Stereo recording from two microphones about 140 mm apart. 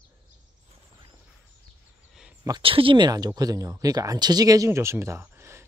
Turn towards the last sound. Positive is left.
turn(degrees=-20)  # may be behind; listen again after turning